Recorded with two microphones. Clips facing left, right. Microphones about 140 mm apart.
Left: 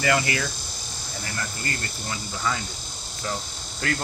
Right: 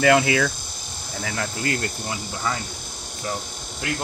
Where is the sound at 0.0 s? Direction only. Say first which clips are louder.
Right 6 dB; 75° right (ahead or behind).